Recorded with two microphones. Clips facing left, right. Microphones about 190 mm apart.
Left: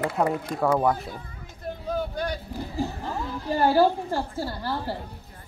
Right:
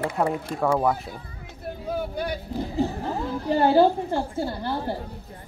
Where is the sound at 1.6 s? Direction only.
10° right (ahead or behind).